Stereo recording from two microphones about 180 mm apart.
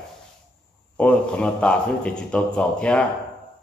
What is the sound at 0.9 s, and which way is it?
A man's voice, 5° left (ahead or behind).